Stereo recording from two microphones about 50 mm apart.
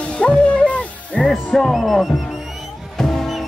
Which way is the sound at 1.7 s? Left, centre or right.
Centre.